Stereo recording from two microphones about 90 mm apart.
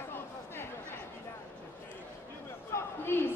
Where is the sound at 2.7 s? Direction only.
25° left (ahead or behind).